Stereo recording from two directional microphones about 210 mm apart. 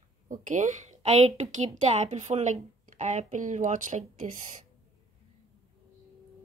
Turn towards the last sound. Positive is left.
turn(degrees=-35)  # may be behind; listen again after turning